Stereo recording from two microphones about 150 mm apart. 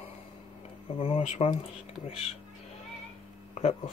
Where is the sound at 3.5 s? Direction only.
50° left (ahead or behind).